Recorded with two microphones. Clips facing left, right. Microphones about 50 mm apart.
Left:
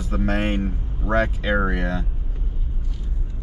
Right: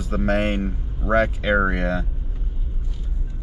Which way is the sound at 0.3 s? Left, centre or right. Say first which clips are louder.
Right 3 dB; centre.